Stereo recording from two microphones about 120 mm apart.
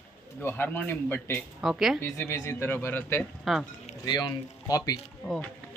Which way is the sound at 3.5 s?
Centre (ahead or behind).